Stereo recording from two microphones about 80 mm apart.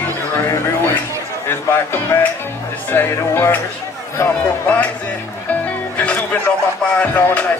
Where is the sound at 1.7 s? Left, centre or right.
Left.